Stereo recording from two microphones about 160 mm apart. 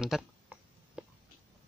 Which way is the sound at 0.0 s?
5° right (ahead or behind).